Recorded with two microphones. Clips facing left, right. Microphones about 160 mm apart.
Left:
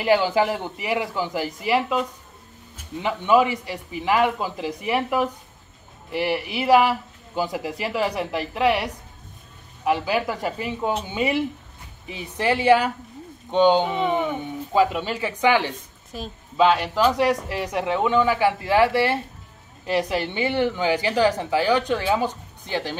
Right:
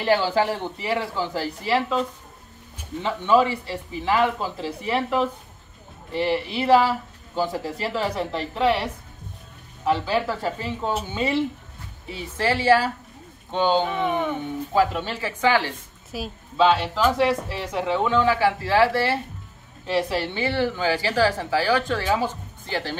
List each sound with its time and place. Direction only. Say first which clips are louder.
0.0 s speech: left 1 dB; 15° left (ahead or behind)
3.0 s speech: left 1 dB; 15° left (ahead or behind)
16.1 s a woman's voice: right 2 dB; 5° right (ahead or behind)
16.5 s speech: left 1 dB; 10° left (ahead or behind)